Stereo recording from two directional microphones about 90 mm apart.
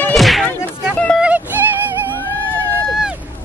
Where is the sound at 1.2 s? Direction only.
15° right (ahead or behind).